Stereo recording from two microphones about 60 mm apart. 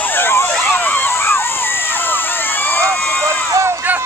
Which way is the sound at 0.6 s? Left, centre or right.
Left.